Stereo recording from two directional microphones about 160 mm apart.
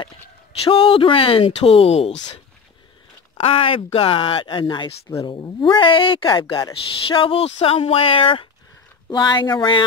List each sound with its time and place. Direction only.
0.7 s speech: 35° left (ahead or behind)
3.3 s speech: 35° left (ahead or behind)